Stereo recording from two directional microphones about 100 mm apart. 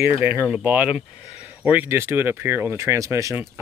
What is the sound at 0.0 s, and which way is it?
Speech, 20° right (ahead or behind).